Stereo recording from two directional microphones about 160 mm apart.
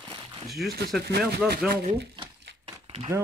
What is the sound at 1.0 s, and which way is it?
Speech, 90° right.